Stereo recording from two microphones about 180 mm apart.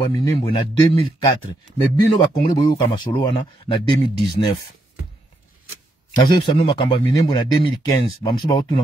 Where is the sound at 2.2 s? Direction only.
25° left (ahead or behind).